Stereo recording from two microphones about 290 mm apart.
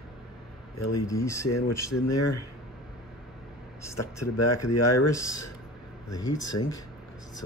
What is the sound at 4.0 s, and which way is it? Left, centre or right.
Speech, left.